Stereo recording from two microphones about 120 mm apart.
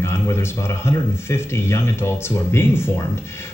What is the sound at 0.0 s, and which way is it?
A man's voice, 20° left (ahead or behind).